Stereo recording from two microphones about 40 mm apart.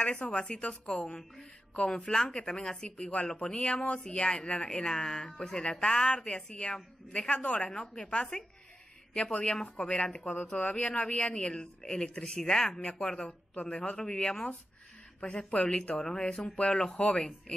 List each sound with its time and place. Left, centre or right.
0.0 s speech: left
9.3 s speech: left
10.6 s speech: left; by 14.4 s centre
15.1 s speech: left
15.9 s speech: centre